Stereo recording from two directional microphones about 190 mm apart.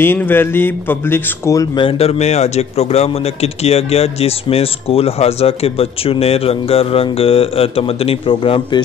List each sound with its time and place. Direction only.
0.0 s speech: 10° left (ahead or behind)
1.9 s speech: 30° left (ahead or behind)